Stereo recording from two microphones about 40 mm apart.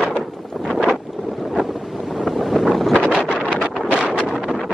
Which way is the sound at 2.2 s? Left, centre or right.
Centre.